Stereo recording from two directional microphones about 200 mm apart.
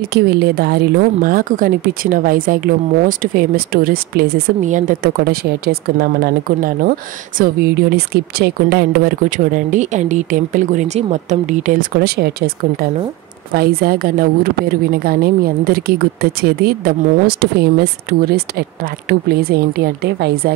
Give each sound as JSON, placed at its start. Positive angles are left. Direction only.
{"t": 0.1, "sound": "speech", "side_deg": -50}
{"t": 9.7, "sound": "speech", "side_deg": -35}
{"t": 13.6, "sound": "speech", "side_deg": -50}